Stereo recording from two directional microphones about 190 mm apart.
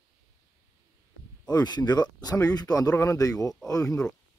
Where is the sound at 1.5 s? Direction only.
20° left (ahead or behind).